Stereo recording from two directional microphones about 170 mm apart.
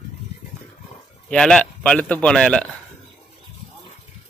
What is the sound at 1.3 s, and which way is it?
Speech, 5° left (ahead or behind).